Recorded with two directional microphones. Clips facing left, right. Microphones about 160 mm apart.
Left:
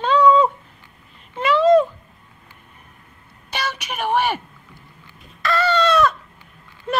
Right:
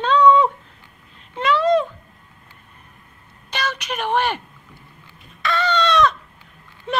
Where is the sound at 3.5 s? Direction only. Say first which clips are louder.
Right 1 dB; 10° left (ahead or behind).